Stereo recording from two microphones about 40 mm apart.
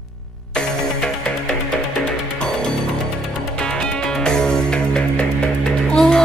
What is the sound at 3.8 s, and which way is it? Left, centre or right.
Music, centre.